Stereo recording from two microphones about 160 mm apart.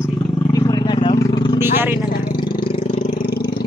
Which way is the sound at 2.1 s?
60° left (ahead or behind).